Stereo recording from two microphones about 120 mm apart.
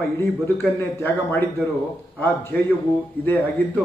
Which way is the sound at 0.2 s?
20° left (ahead or behind).